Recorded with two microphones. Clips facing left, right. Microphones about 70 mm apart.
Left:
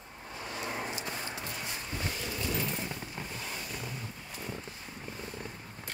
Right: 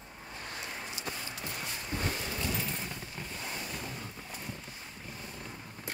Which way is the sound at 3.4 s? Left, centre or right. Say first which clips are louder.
Even; centre.